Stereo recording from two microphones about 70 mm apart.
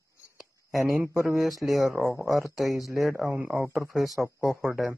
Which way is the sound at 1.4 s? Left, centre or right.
Centre.